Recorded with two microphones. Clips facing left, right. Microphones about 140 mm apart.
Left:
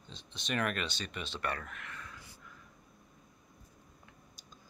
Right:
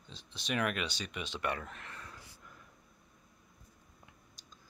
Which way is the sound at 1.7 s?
30° right (ahead or behind).